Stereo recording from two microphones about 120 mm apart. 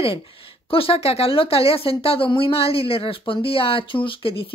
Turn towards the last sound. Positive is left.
turn(degrees=45)  # may be behind; listen again after turning